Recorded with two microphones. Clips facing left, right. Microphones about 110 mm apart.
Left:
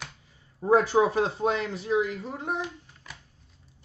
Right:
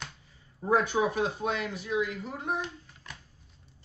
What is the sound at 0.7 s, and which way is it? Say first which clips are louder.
Speech: left 5 dB; 35° left (ahead or behind).